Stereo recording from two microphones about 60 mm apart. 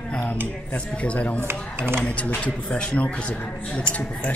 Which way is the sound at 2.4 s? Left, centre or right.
Centre.